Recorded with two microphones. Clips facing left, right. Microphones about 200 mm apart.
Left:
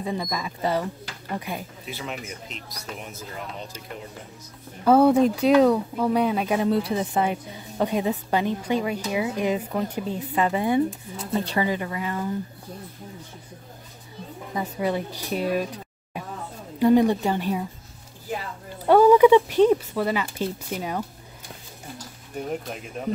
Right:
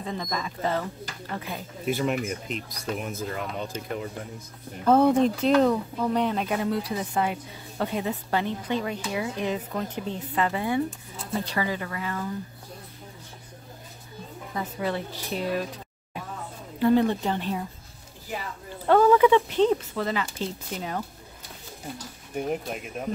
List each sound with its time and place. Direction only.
0.0 s speech: 10° left (ahead or behind)
1.9 s speech: 50° right (ahead or behind)
4.8 s speech: 5° left (ahead or behind)
6.7 s speech: 25° left (ahead or behind)
14.5 s speech: 15° left (ahead or behind)
16.8 s speech: 15° left (ahead or behind)
18.9 s speech: 10° left (ahead or behind)